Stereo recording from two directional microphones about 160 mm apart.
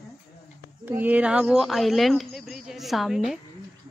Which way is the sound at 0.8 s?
10° right (ahead or behind).